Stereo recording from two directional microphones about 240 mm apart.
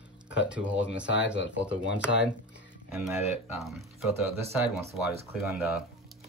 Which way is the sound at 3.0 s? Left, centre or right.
Centre.